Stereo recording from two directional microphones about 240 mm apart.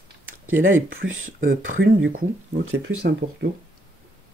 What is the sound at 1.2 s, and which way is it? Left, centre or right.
Speech, right.